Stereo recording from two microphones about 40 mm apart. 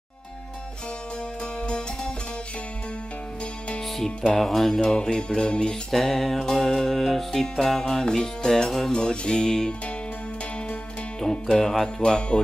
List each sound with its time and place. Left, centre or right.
1.4 s music: left
3.8 s music: centre
5.1 s music: left
5.9 s music: centre
8.9 s music: left
11.4 s music: centre